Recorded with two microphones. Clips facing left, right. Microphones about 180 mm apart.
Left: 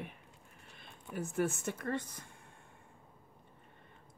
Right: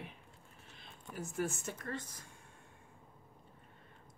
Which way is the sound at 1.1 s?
60° left (ahead or behind).